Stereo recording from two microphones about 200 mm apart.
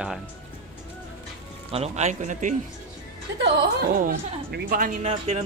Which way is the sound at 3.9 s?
45° right (ahead or behind).